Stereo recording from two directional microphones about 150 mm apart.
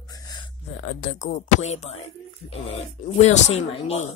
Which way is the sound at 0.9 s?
60° left (ahead or behind).